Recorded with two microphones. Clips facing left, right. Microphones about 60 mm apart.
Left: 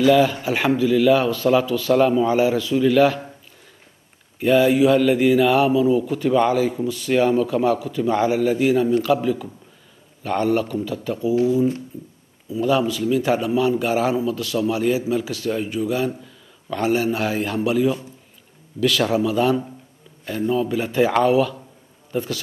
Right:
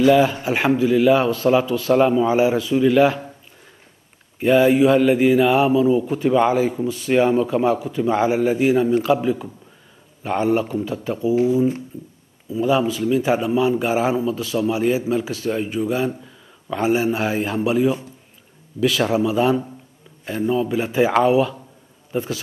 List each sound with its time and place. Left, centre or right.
0.0 s speech: centre
4.4 s a man's voice: centre